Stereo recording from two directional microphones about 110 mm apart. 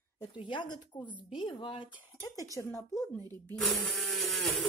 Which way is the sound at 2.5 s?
25° left (ahead or behind).